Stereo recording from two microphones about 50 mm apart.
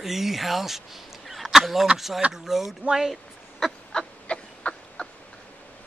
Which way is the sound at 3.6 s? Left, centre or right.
Centre.